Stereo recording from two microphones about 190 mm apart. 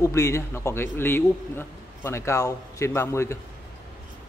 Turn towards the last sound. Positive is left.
turn(degrees=15)  # may be behind; listen again after turning